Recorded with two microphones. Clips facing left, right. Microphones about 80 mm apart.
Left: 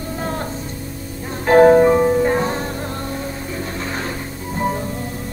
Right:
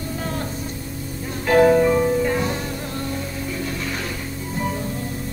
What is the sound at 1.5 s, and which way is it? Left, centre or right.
Music, left.